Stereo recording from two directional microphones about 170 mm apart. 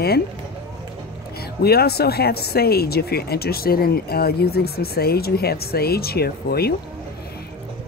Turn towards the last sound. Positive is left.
turn(degrees=65)  # may be behind; listen again after turning